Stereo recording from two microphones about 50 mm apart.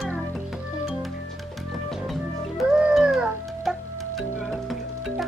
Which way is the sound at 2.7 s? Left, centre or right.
Centre.